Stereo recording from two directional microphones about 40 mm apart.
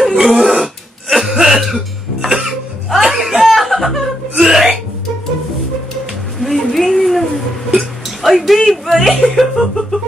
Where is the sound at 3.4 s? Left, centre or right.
Centre.